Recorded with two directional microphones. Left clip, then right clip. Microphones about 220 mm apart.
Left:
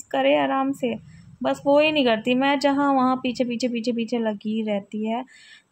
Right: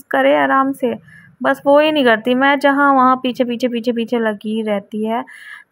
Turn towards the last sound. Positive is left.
turn(degrees=-15)  # may be behind; listen again after turning